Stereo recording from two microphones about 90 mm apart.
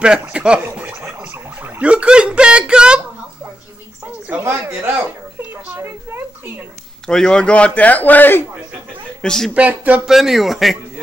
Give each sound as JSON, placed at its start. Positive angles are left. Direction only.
{"t": 0.0, "sound": "speech", "side_deg": -10}
{"t": 0.7, "sound": "gargling", "side_deg": -15}
{"t": 1.2, "sound": "a sound", "side_deg": -15}
{"t": 4.4, "sound": "a sound", "side_deg": -25}
{"t": 7.1, "sound": "a man's voice", "side_deg": 10}
{"t": 9.2, "sound": "a woman's voice", "side_deg": 5}
{"t": 9.5, "sound": "speech", "side_deg": -15}
{"t": 10.0, "sound": "a man's voice", "side_deg": -5}